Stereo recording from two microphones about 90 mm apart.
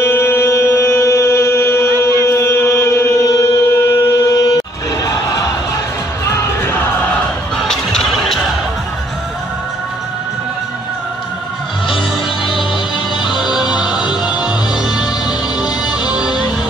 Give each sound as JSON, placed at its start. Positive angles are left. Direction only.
{"t": 0.0, "sound": "music", "side_deg": 30}
{"t": 2.2, "sound": "mantra", "side_deg": 30}
{"t": 5.0, "sound": "a sound", "side_deg": 40}
{"t": 6.2, "sound": "music", "side_deg": 30}
{"t": 7.6, "sound": "a sound", "side_deg": 5}
{"t": 13.3, "sound": "music", "side_deg": -5}
{"t": 15.6, "sound": "music", "side_deg": -10}